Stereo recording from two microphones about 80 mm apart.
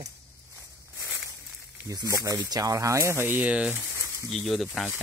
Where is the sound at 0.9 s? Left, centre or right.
Right.